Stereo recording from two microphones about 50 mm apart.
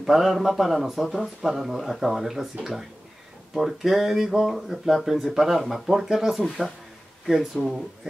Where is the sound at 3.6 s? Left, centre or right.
Centre.